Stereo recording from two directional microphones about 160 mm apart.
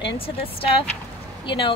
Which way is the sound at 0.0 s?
35° left (ahead or behind).